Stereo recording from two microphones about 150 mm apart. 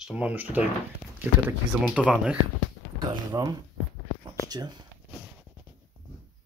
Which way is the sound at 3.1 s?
25° right (ahead or behind).